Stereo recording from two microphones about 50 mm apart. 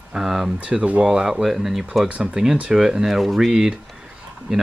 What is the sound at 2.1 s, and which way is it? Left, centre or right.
Speech, right.